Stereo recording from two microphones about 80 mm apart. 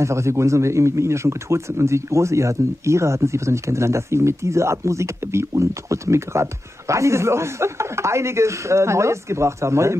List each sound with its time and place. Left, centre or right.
0.0 s a man's voice: right